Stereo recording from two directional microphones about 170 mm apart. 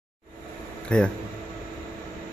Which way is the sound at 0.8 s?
5° left (ahead or behind).